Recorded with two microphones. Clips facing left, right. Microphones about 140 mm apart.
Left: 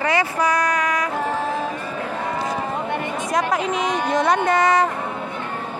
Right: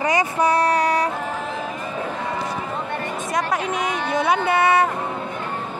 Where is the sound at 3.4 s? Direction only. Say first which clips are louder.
Left 2 dB; centre (ahead or behind).